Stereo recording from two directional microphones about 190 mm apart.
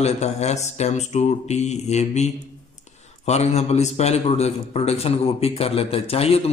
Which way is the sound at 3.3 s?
35° left (ahead or behind).